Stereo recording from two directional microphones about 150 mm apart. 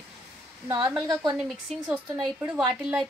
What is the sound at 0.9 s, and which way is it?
A woman's voice, 5° right (ahead or behind).